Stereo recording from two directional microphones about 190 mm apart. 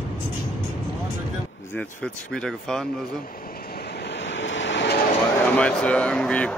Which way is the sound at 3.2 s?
50° left (ahead or behind).